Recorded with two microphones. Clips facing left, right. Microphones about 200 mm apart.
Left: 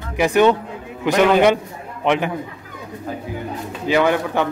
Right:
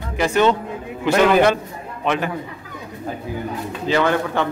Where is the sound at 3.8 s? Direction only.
15° left (ahead or behind).